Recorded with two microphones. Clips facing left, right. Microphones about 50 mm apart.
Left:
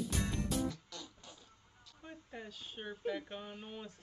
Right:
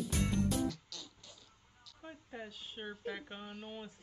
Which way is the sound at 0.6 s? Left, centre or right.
Left.